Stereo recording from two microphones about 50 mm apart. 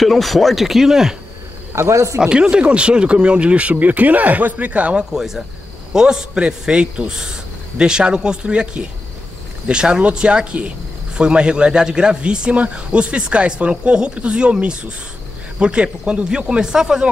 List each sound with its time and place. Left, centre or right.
0.0 s speech: centre
1.8 s speech: right
2.1 s a man's voice: centre
4.9 s a man's voice: centre